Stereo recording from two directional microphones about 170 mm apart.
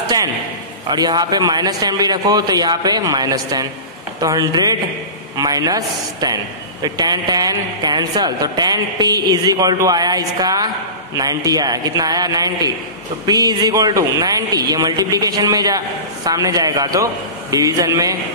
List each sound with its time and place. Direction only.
0.8 s a man's voice: 25° right (ahead or behind)